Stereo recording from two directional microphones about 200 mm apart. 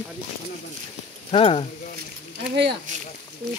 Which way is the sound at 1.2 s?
30° left (ahead or behind).